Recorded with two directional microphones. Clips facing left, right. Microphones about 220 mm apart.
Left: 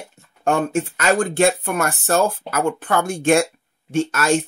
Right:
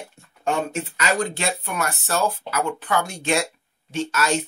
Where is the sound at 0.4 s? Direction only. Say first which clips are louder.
Left 5 dB; 50° left (ahead or behind).